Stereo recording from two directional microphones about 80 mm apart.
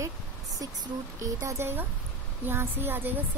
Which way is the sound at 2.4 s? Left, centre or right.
Right.